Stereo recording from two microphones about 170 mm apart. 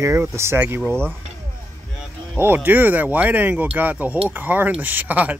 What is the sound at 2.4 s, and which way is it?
Speech, 10° right (ahead or behind).